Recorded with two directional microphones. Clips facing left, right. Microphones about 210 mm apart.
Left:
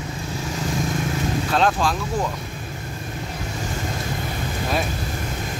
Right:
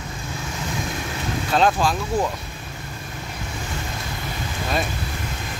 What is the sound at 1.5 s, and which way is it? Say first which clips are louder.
Speech: right 2 dB; 5° right (ahead or behind).